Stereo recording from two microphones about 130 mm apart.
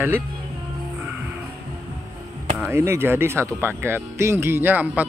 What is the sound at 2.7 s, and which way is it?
A man's voice, 20° right (ahead or behind).